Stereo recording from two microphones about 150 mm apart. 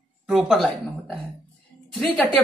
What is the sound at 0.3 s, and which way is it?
Speech, centre (ahead or behind).